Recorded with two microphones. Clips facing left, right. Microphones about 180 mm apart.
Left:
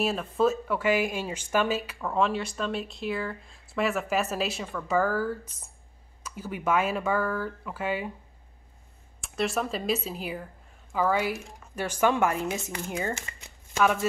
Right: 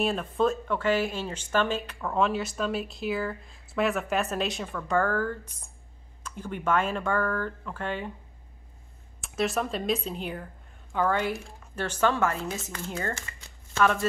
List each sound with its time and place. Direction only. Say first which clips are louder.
0.0 s speech: left 1 dB; centre (ahead or behind)
9.2 s speech: right 1 dB; centre (ahead or behind); by 13.9 s 15° left (ahead or behind)